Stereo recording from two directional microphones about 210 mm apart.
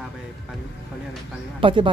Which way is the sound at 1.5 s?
25° right (ahead or behind).